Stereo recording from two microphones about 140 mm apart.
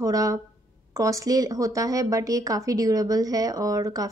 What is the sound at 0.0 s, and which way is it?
Speech, 25° right (ahead or behind).